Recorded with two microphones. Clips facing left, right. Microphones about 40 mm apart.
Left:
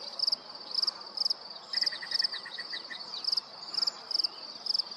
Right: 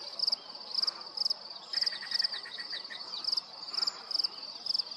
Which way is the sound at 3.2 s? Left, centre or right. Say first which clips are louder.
Left 2 dB; right.